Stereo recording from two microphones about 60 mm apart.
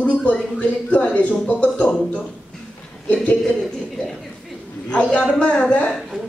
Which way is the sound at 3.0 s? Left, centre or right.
Left.